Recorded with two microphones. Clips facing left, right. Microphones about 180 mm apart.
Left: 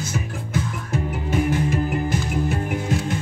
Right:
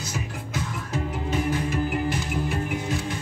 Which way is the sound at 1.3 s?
45° left (ahead or behind).